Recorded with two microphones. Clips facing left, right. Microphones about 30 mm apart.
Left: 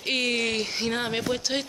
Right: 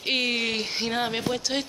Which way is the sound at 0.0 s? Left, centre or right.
Centre.